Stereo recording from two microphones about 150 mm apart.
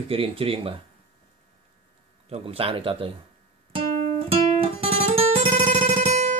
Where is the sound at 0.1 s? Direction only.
40° right (ahead or behind).